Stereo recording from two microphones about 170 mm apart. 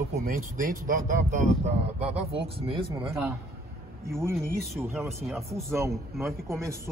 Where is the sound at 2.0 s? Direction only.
35° right (ahead or behind).